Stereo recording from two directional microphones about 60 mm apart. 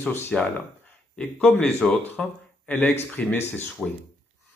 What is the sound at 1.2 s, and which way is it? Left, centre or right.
A man's voice, centre.